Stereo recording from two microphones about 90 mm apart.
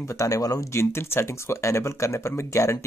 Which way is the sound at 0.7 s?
30° left (ahead or behind).